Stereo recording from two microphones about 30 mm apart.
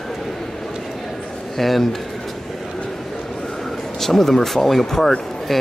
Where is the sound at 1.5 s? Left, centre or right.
Centre.